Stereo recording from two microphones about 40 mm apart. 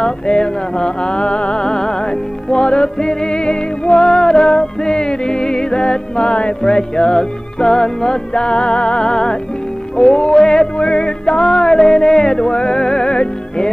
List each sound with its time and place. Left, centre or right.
0.0 s music: centre